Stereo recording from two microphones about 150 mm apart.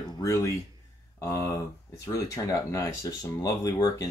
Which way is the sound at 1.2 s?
20° left (ahead or behind).